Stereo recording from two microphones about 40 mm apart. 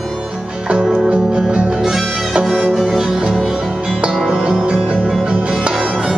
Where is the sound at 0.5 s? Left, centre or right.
Centre.